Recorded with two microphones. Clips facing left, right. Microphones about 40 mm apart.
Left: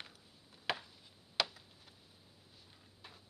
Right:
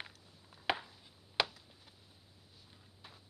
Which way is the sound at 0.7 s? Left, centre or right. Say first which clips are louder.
Right 3 dB; centre.